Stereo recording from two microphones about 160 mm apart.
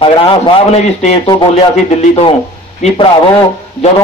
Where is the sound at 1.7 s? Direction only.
45° left (ahead or behind).